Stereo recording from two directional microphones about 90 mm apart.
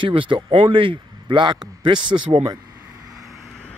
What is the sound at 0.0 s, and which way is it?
Speech, 70° right (ahead or behind).